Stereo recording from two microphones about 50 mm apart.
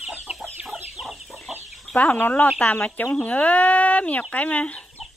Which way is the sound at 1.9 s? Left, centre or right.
Left.